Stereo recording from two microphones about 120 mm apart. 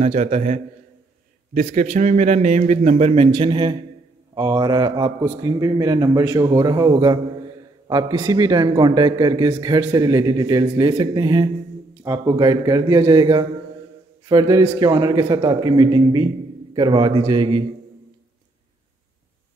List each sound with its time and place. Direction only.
0.0 s a man's voice: 70° right (ahead or behind)
3.3 s a man's voice: 45° right (ahead or behind)
4.4 s a man's voice: 35° right (ahead or behind)